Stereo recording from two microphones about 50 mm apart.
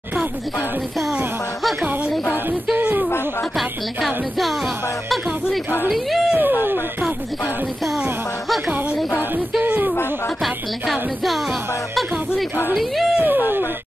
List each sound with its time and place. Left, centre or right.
2.7 s a sound: right
3.5 s music: centre
6.3 s speech: right
9.6 s a sound: right
10.4 s music: centre
13.2 s speech: right